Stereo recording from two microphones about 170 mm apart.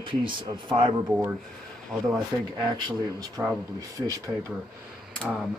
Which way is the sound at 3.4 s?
10° right (ahead or behind).